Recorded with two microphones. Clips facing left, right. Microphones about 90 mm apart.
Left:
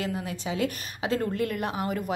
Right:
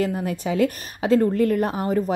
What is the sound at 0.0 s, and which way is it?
A woman's voice, 45° right (ahead or behind).